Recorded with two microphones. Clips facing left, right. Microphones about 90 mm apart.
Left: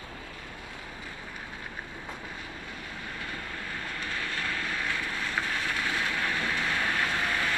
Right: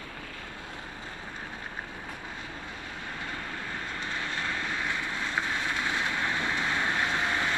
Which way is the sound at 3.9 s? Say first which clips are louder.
Even; 20° right (ahead or behind).